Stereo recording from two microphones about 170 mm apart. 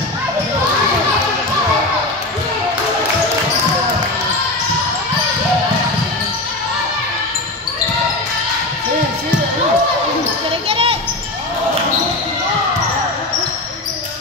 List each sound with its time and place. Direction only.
10.7 s children playing: 35° right (ahead or behind)